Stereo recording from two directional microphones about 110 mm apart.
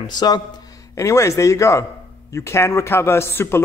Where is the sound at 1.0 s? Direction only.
30° left (ahead or behind).